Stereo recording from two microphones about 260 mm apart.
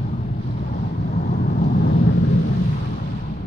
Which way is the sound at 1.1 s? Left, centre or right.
Left.